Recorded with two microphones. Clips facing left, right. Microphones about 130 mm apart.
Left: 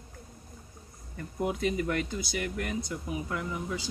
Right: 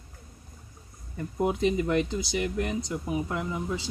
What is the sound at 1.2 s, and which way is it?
Speech, 25° right (ahead or behind).